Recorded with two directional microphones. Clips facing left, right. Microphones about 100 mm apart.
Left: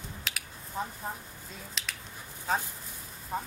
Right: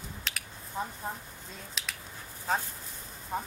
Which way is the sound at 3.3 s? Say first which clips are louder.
Even; centre (ahead or behind).